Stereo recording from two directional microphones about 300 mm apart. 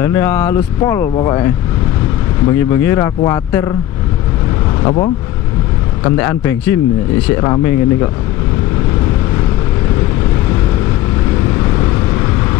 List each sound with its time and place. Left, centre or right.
0.0 s speech: centre
2.5 s speech: centre
4.8 s speech: centre